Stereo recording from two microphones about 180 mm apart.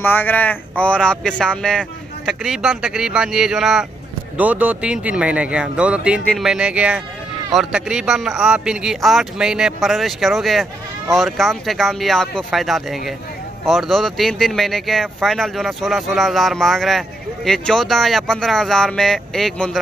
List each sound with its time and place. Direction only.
0.0 s a man's voice: 10° left (ahead or behind)